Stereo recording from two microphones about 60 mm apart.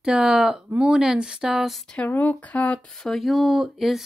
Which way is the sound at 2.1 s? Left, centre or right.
Left.